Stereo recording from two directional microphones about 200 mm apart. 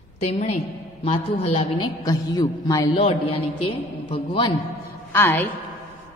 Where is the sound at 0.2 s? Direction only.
30° left (ahead or behind).